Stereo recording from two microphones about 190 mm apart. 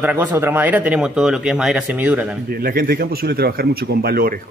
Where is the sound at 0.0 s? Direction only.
10° right (ahead or behind).